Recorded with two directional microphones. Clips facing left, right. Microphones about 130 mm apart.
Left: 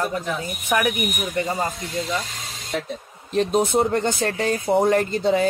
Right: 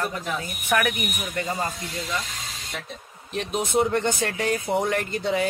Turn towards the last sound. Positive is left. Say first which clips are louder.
# left 5 dB
turn(degrees=35)  # may be behind; listen again after turning